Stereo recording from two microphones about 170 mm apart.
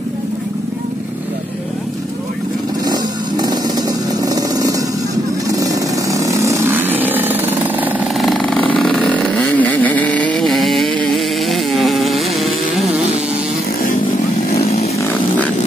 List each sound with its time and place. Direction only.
2.9 s motorcycle: 25° right (ahead or behind)
5.5 s vehicle: 20° right (ahead or behind)
8.2 s vehicle: centre (ahead or behind)